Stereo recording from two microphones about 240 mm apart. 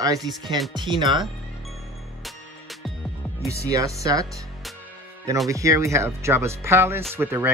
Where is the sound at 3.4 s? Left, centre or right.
Centre.